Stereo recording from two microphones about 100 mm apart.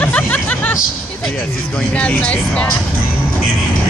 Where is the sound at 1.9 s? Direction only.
15° left (ahead or behind).